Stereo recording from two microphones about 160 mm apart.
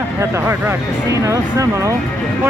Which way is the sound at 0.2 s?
15° right (ahead or behind).